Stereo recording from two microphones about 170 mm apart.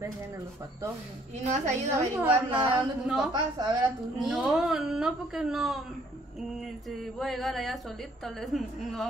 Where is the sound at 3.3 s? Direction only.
25° right (ahead or behind).